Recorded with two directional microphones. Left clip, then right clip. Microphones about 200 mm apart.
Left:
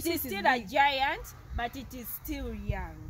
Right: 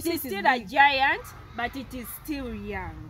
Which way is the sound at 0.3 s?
15° left (ahead or behind).